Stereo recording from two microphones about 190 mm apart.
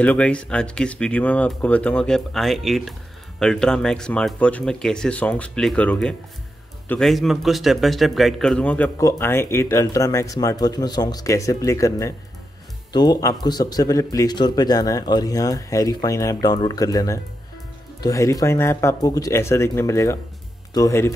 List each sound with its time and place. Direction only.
0.0 s a man's voice: 5° left (ahead or behind)